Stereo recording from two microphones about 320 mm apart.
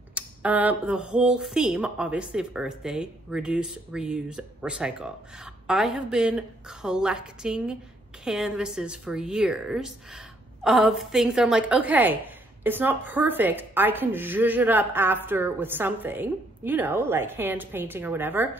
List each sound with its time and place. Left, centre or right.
0.1 s speech: centre